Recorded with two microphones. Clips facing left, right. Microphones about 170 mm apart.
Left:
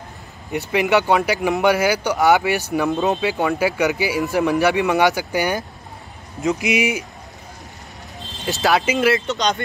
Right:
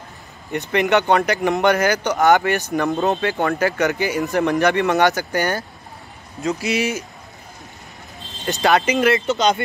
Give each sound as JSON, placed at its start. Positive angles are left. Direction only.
{"t": 0.5, "sound": "speech", "side_deg": 5}
{"t": 8.5, "sound": "speech", "side_deg": 0}